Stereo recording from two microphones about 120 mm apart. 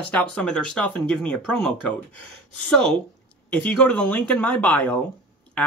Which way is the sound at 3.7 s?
10° left (ahead or behind).